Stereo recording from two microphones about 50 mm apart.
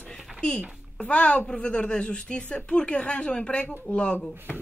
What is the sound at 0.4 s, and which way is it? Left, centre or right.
A child's voice, centre.